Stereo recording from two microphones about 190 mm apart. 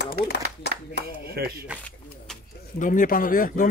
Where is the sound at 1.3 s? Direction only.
55° right (ahead or behind).